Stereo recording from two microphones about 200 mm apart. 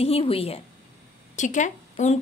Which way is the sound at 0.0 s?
30° left (ahead or behind).